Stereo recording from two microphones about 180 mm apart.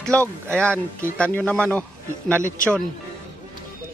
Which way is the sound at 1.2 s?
10° left (ahead or behind).